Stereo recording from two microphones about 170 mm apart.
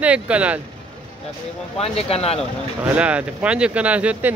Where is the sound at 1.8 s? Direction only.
35° left (ahead or behind).